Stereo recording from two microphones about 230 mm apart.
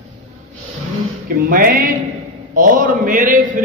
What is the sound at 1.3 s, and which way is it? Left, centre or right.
A man's voice, right.